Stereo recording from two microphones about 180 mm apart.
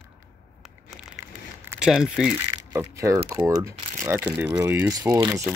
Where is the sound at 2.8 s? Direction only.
15° right (ahead or behind).